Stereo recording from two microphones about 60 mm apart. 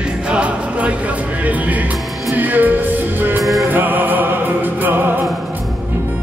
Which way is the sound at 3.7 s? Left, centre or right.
Right.